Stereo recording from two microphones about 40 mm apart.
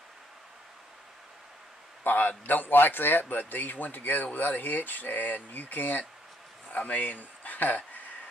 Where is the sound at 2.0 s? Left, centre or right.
Left.